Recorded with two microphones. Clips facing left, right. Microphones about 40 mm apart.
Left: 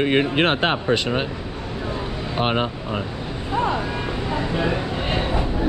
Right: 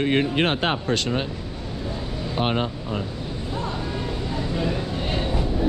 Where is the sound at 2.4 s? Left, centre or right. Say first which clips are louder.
Left 2 dB; centre.